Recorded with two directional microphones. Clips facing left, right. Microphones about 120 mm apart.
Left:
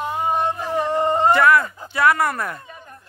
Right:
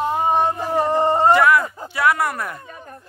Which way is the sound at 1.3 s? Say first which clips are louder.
Left 1 dB; 10° right (ahead or behind).